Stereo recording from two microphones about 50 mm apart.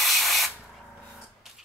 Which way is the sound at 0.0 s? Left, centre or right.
Centre.